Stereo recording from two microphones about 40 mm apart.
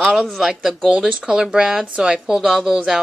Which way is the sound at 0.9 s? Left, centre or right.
Right.